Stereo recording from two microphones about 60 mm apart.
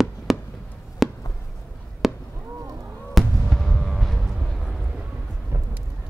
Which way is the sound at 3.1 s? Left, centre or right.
Centre.